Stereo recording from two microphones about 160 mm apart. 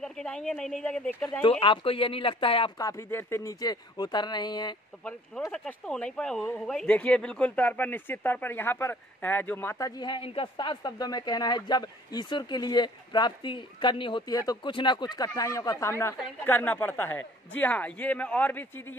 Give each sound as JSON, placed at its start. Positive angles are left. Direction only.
{"t": 0.0, "sound": "speech", "side_deg": 5}
{"t": 1.4, "sound": "speech", "side_deg": 30}
{"t": 2.8, "sound": "speech", "side_deg": 20}
{"t": 5.5, "sound": "speech", "side_deg": 5}